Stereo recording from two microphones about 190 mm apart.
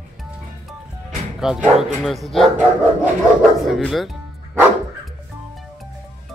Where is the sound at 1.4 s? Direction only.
Centre (ahead or behind).